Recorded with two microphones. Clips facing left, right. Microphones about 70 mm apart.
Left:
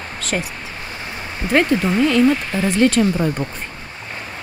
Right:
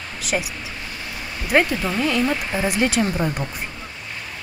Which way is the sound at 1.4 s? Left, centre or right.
Left.